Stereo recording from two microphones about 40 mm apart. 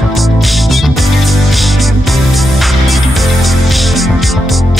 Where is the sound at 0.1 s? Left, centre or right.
Centre.